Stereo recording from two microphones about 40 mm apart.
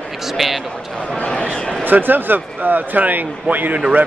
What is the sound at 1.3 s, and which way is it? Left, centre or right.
Speech, left.